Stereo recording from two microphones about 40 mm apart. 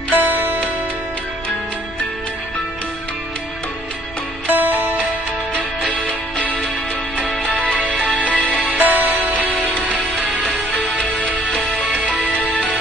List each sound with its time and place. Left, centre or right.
0.1 s music: right
4.5 s music: right
7.3 s music: centre
8.2 s music: left
8.7 s music: right
9.8 s music: right
10.4 s music: left